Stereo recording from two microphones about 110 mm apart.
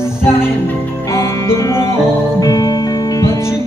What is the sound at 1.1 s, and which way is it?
Music, 30° left (ahead or behind).